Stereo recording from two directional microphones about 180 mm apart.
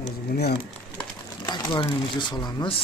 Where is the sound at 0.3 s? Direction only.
60° left (ahead or behind).